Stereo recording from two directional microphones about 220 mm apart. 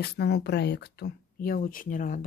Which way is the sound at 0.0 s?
50° left (ahead or behind).